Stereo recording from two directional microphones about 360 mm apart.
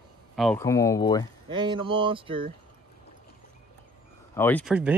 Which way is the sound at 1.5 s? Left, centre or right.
Centre.